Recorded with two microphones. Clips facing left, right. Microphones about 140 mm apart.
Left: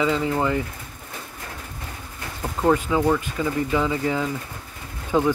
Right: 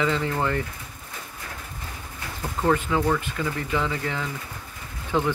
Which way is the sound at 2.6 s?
15° left (ahead or behind).